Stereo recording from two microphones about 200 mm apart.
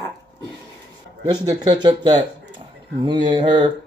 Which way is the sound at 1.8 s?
20° right (ahead or behind).